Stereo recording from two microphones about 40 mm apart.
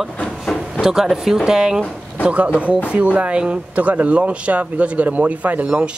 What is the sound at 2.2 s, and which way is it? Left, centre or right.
Speech, right.